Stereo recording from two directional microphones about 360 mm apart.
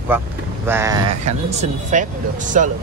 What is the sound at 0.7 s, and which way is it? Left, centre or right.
Speech, centre.